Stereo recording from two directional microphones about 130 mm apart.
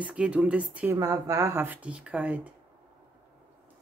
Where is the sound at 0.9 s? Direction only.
25° right (ahead or behind); by 2.5 s 10° right (ahead or behind).